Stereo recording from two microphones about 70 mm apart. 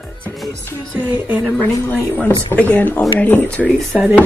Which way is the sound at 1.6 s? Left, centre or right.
Left.